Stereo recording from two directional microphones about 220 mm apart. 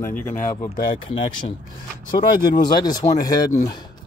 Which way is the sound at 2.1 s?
20° left (ahead or behind).